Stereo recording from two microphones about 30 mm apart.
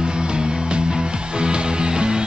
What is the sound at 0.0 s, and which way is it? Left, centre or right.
Music, right.